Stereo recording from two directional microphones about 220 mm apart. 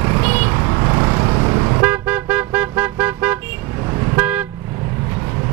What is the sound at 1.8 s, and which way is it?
Vehicle, 10° right (ahead or behind).